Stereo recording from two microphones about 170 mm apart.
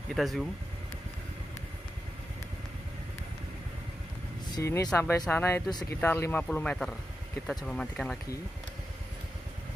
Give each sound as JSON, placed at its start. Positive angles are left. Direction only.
{"t": 0.1, "sound": "speech", "side_deg": 0}
{"t": 4.6, "sound": "speech", "side_deg": 20}
{"t": 5.7, "sound": "speech", "side_deg": 25}
{"t": 5.9, "sound": "speech", "side_deg": 15}